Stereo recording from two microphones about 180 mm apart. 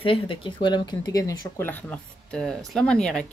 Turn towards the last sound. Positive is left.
turn(degrees=5)  # may be behind; listen again after turning